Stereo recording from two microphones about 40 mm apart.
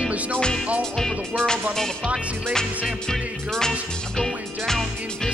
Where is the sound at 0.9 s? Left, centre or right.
Centre.